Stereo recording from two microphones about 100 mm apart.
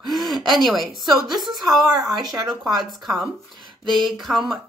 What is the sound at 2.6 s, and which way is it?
Speech, centre (ahead or behind).